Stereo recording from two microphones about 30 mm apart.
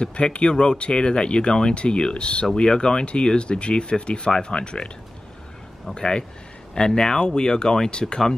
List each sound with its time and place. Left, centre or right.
0.0 s speech: left
5.9 s speech: left